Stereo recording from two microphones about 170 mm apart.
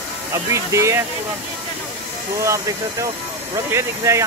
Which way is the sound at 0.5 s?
15° right (ahead or behind).